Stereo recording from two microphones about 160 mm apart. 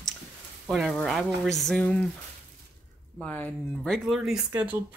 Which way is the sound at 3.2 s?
10° left (ahead or behind).